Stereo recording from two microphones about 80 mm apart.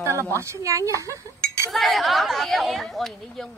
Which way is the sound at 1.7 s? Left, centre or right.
Centre.